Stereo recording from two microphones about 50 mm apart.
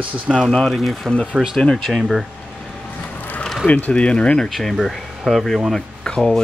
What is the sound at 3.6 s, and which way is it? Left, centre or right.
Speech, left.